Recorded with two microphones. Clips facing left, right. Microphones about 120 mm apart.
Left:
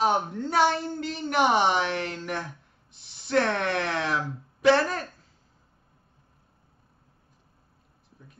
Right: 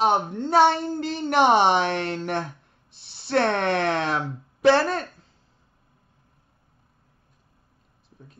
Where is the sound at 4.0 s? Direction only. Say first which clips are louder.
Right 2 dB; 25° right (ahead or behind).